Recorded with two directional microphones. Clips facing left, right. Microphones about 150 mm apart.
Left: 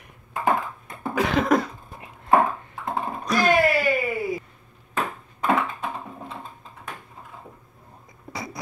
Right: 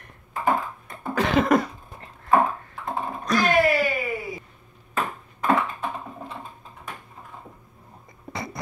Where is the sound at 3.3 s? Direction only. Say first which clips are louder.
Left 2 dB; 5° left (ahead or behind).